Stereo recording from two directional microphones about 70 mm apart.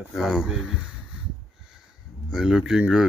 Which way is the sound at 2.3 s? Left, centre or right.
Centre.